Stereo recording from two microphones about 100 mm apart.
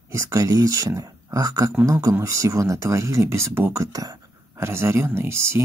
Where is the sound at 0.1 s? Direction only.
30° right (ahead or behind).